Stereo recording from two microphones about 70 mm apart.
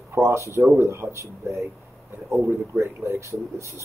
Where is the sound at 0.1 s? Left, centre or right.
Right.